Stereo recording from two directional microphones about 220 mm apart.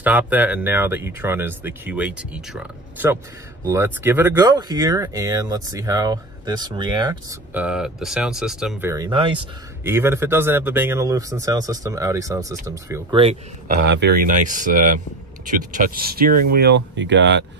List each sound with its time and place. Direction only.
0.0 s speech: 5° right (ahead or behind)
7.5 s speech: 5° right (ahead or behind)
8.9 s speech: 20° right (ahead or behind)
9.8 s speech: 10° right (ahead or behind)
13.2 s speech: 30° right (ahead or behind)
13.8 s speech: 50° right (ahead or behind)